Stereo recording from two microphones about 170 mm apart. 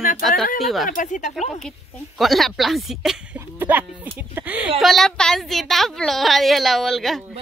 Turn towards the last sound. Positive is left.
turn(degrees=0)  # may be behind; listen again after turning